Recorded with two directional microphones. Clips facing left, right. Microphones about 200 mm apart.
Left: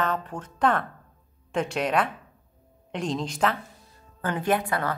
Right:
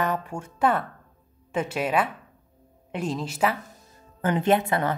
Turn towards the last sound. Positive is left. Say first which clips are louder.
# right 3 dB
turn(degrees=-25)  # may be behind; listen again after turning